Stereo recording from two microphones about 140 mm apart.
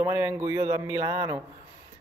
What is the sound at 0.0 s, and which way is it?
Speech, 15° right (ahead or behind).